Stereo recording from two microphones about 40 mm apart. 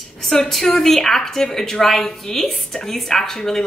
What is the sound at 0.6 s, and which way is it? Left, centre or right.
Speech, centre.